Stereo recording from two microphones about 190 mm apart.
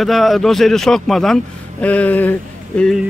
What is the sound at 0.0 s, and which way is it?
Speech, centre (ahead or behind).